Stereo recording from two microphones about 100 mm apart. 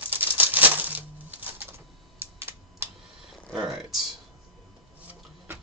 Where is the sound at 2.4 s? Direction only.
25° right (ahead or behind).